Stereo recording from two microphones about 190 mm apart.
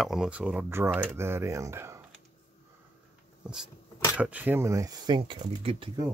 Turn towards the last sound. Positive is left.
turn(degrees=-25)  # may be behind; listen again after turning